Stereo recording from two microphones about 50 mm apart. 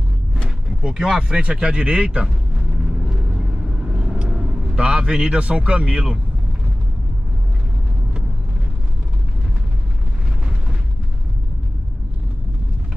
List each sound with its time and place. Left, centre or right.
0.8 s speech: centre
3.9 s speech: centre